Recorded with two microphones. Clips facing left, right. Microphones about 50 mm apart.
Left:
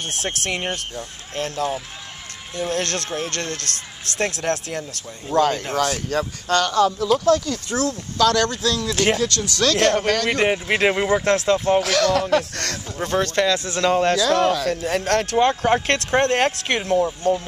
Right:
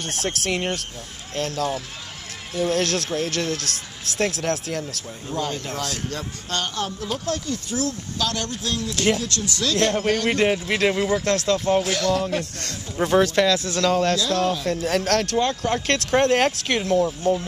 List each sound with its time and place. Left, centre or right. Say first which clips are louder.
0.2 s speech: right 2 dB; centre
5.3 s speech: left 9 dB; left
5.8 s speech: left 7 dB; left
10.3 s speech: left 1 dB; centre
10.7 s speech: left 2 dB; left
11.8 s speech: left 3 dB; left
12.9 s speech: right 3 dB; centre
13.5 s speech: even; centre
13.8 s speech: left 2 dB; centre
14.4 s speech: left 4 dB; left
14.7 s speech: left 1 dB; centre
15.3 s speech: left 5 dB; left
15.9 s speech: even; centre